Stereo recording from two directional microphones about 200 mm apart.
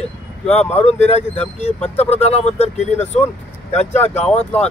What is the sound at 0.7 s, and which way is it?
Speech, 35° left (ahead or behind).